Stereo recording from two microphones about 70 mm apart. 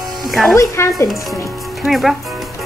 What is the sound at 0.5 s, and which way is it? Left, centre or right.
Speech, left.